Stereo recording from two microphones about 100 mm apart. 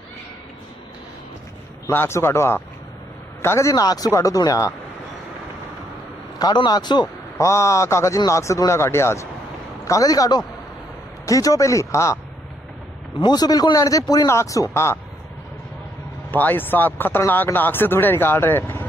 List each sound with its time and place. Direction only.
1.9 s a man's voice: 25° left (ahead or behind)
6.3 s a man's voice: 45° left (ahead or behind)
7.3 s a man's voice: 30° left (ahead or behind)
13.2 s a man's voice: 40° left (ahead or behind)
16.3 s speech: 20° left (ahead or behind)